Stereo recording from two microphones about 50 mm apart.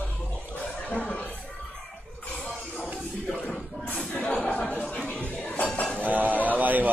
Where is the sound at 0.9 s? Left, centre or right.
Left.